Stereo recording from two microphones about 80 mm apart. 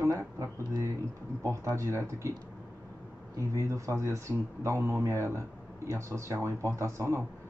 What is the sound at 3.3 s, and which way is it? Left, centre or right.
Speech, right.